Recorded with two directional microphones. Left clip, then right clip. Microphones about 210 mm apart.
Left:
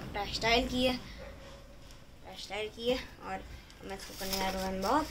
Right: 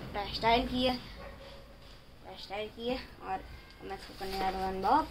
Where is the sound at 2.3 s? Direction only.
10° right (ahead or behind).